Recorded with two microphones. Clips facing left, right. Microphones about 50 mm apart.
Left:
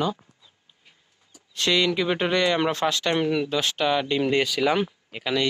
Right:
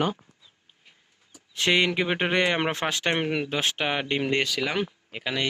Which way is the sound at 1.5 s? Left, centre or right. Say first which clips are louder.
Even; right.